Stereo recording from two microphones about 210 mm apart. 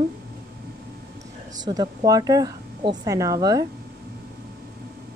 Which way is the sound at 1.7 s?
15° right (ahead or behind).